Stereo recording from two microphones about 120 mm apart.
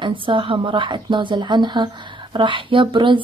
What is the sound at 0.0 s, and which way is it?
Speech, 45° right (ahead or behind).